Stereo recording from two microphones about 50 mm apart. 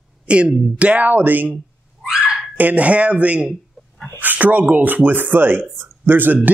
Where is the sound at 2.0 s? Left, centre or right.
Centre.